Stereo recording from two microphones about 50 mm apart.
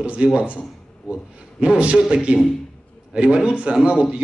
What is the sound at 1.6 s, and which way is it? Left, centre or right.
A man's voice, right.